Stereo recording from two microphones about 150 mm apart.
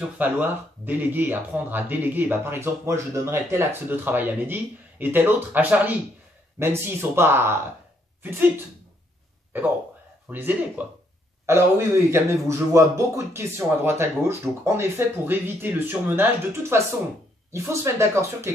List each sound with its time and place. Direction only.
0.0 s speech: 10° right (ahead or behind)
9.5 s speech: 15° right (ahead or behind)